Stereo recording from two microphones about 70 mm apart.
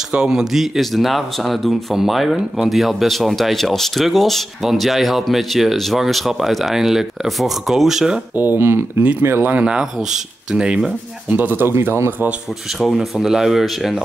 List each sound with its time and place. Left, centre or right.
0.1 s speech: centre
8.4 s speech: right
9.7 s speech: centre; by 11.9 s right
12.8 s speech: centre